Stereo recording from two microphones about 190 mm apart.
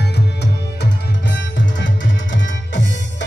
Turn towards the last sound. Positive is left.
turn(degrees=70)  # may be behind; listen again after turning